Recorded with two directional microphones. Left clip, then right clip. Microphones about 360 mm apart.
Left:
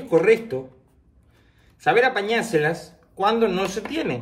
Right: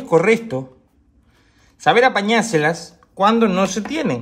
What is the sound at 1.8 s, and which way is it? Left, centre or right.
Speech, centre.